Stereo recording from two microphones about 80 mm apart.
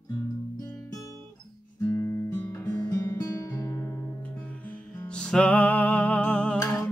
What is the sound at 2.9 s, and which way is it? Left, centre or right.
Music, left.